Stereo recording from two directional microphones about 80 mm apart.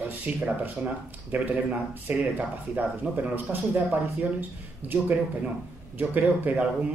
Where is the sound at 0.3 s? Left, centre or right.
Centre.